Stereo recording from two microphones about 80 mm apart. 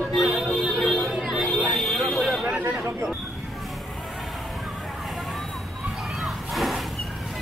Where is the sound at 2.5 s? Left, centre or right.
Centre.